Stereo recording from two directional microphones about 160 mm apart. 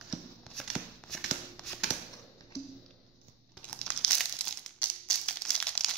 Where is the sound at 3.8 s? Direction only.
5° left (ahead or behind).